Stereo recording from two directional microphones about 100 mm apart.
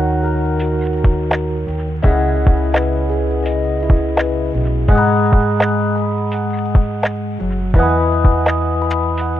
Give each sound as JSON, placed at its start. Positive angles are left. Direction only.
{"t": 0.0, "sound": "music", "side_deg": 0}
{"t": 3.8, "sound": "music", "side_deg": 0}
{"t": 7.7, "sound": "music", "side_deg": 5}